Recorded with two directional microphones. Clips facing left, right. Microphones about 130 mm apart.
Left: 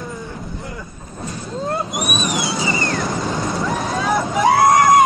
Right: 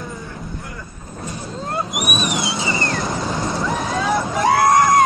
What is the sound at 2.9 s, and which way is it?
Vehicle, centre (ahead or behind).